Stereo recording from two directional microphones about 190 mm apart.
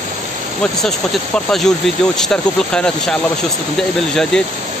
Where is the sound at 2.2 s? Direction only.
5° left (ahead or behind).